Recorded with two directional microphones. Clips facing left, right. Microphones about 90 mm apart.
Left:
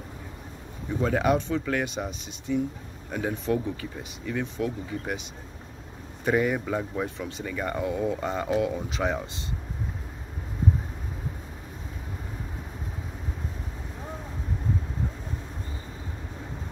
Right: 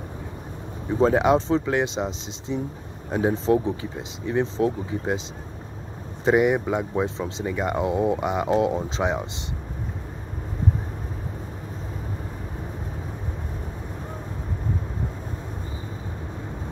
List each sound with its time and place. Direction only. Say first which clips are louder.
0.8 s speech: right 5 dB; 30° right (ahead or behind)
6.2 s speech: right 5 dB; 20° right (ahead or behind)